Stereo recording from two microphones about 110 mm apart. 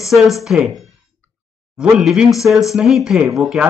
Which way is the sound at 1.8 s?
5° right (ahead or behind).